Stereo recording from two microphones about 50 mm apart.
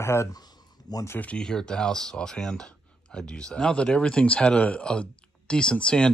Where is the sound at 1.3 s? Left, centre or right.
Centre.